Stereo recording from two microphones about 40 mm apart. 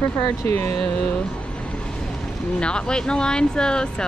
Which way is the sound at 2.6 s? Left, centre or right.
Left.